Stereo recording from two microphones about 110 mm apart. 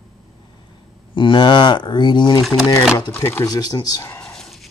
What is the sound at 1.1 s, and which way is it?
Speech, 45° left (ahead or behind).